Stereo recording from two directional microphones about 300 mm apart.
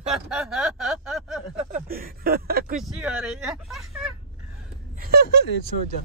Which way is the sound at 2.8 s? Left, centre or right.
Centre.